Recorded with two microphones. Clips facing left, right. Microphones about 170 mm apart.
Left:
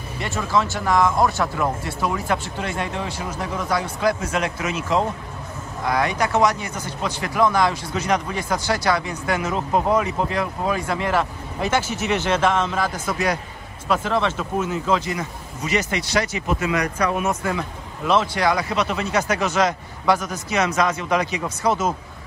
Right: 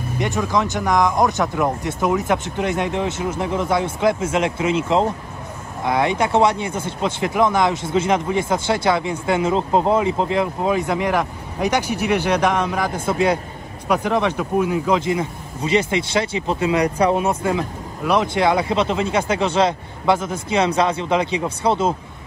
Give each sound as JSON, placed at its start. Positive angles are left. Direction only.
{"t": 0.2, "sound": "speech", "side_deg": -15}
{"t": 13.0, "sound": "speech", "side_deg": -25}
{"t": 13.8, "sound": "speech", "side_deg": -15}
{"t": 17.5, "sound": "speech", "side_deg": -15}